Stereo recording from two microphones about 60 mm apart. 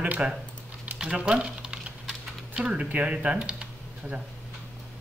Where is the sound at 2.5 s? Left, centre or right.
Centre.